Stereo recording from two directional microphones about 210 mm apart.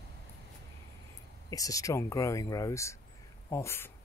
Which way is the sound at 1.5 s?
15° left (ahead or behind).